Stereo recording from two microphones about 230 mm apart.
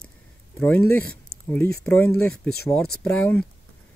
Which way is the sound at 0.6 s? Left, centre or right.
Centre.